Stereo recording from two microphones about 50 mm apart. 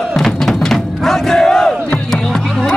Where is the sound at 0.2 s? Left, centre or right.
Centre.